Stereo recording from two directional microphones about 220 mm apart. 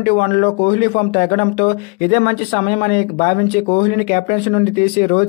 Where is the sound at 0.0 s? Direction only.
30° left (ahead or behind).